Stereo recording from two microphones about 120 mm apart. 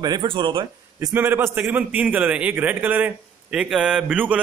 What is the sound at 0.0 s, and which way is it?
Speech, 40° right (ahead or behind).